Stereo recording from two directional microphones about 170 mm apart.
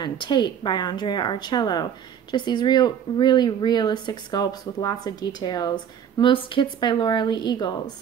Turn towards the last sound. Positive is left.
turn(degrees=25)  # may be behind; listen again after turning